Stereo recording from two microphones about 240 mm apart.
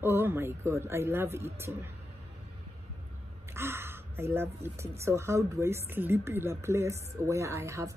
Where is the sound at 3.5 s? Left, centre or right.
Centre.